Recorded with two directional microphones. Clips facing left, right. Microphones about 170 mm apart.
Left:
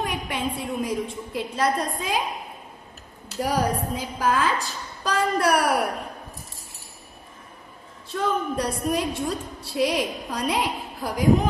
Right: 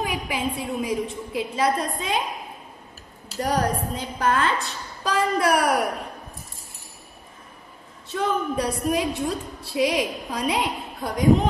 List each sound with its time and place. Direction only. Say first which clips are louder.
0.0 s a woman's voice: right 1 dB; centre (ahead or behind)
3.3 s a woman's voice: even; 5° left (ahead or behind)
8.1 s a woman's voice: right 1 dB; centre (ahead or behind)